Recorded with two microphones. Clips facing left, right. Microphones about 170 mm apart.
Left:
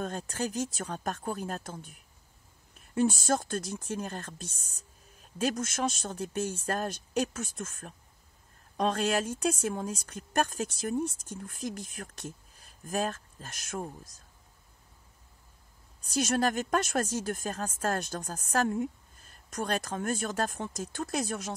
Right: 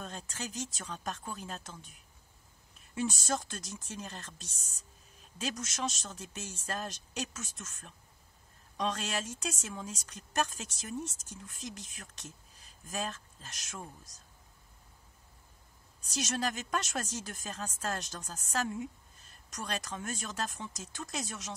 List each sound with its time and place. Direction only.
0.0 s speech: 55° left (ahead or behind)
16.0 s speech: 55° left (ahead or behind)